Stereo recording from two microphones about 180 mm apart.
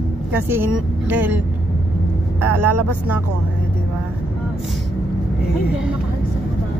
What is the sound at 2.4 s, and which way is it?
Speech, 10° right (ahead or behind).